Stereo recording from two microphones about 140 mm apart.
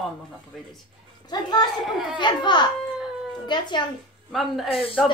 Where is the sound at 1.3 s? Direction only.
30° left (ahead or behind).